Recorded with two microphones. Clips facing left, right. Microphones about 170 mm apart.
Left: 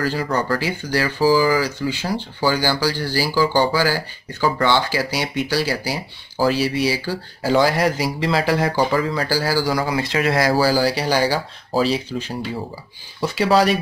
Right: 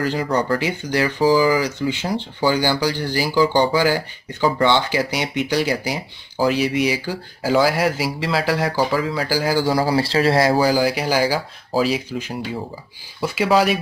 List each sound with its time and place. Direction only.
0.0 s speech: 20° right (ahead or behind)